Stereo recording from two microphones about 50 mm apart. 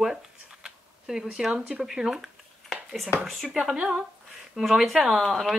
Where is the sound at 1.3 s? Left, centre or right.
Centre.